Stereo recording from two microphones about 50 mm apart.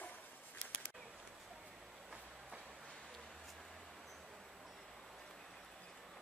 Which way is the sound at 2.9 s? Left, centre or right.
Centre.